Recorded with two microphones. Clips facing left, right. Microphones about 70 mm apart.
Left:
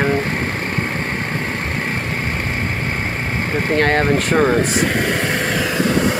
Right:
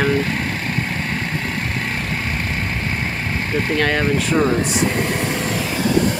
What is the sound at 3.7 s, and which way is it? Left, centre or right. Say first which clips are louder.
Speech: left 4 dB; left.